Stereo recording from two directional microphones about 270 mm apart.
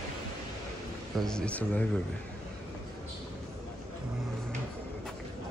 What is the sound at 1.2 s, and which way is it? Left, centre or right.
Speech, centre.